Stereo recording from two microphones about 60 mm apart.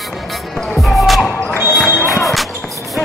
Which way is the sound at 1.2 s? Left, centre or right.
Centre.